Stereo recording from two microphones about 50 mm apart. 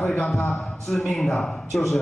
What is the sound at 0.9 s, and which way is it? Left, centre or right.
Speech, centre.